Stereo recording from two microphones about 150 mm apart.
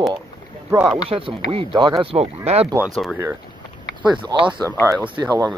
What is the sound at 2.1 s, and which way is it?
Speech, 45° right (ahead or behind).